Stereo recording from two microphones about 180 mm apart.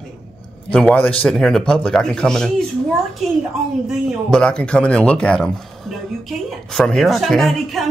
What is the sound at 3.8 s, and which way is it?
Speech, 5° right (ahead or behind).